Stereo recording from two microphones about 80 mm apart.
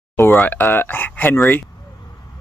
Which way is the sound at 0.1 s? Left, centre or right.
Left.